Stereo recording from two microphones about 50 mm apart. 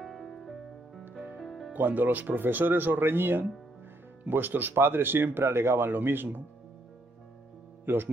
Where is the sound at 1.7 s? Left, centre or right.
Right.